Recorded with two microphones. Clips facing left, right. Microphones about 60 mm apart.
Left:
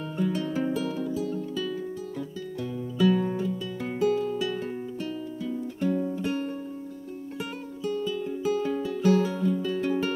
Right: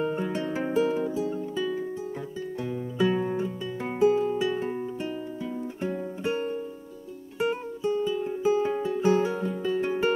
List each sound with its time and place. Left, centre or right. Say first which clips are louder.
0.0 s music: right 1 dB; right